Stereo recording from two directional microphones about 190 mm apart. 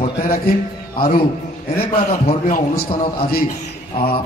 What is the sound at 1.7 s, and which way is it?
A man's voice, 40° left (ahead or behind).